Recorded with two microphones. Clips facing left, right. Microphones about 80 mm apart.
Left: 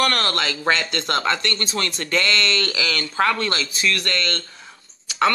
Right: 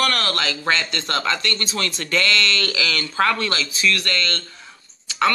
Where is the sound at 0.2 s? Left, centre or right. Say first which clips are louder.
Left 1 dB; centre.